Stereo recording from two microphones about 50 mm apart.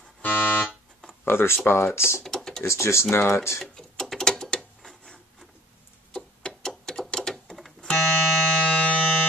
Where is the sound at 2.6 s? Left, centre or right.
Left.